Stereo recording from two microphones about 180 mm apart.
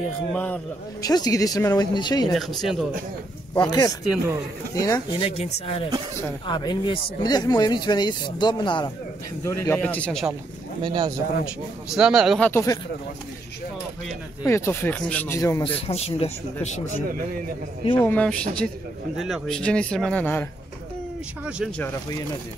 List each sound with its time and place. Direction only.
0.3 s speech: 5° left (ahead or behind)
1.0 s speech: 20° left (ahead or behind)
2.3 s speech: centre (ahead or behind)
3.5 s speech: 20° left (ahead or behind)
5.4 s speech: 30° left (ahead or behind)
9.4 s speech: 15° left (ahead or behind)
10.8 s speech: 25° right (ahead or behind)
11.9 s speech: 5° right (ahead or behind)
12.4 s speech: 10° left (ahead or behind)
14.4 s speech: 15° left (ahead or behind)
15.6 s speech: 35° left (ahead or behind)
17.9 s speech: 10° left (ahead or behind)